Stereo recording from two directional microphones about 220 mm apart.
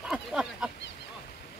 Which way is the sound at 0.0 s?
5° right (ahead or behind).